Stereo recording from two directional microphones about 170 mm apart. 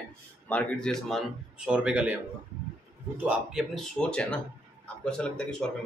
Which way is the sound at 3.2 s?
Centre (ahead or behind).